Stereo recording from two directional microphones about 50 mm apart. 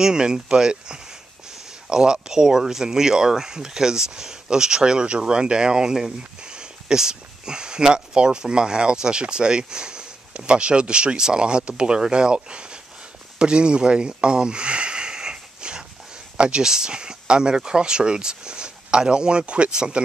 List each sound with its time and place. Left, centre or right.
0.0 s speech: centre
13.4 s a sound: centre
16.3 s speech: right